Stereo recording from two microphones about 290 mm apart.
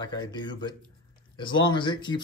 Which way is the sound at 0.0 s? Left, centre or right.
Centre.